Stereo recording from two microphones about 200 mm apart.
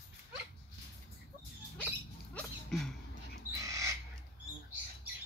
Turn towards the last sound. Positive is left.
turn(degrees=-15)  # may be behind; listen again after turning